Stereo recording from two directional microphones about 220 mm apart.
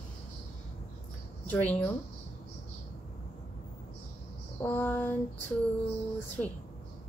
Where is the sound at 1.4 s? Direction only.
5° left (ahead or behind).